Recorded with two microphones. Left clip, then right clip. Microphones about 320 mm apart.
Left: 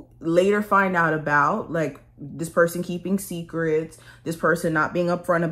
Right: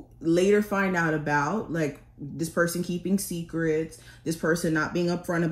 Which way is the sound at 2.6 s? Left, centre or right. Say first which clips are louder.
Left 6 dB; left.